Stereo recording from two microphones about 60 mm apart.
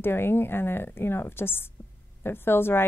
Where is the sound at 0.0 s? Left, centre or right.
Left.